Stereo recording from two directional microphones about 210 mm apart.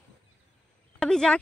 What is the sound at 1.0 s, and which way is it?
Speech, centre (ahead or behind).